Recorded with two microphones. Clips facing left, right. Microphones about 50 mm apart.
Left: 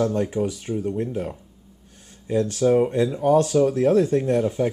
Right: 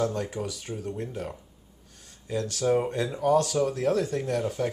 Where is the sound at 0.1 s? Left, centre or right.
Left.